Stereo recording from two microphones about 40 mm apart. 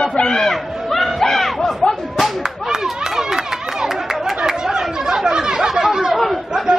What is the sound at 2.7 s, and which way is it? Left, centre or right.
Chatter, centre.